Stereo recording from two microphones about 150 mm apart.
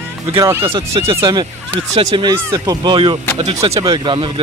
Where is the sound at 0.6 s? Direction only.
40° right (ahead or behind).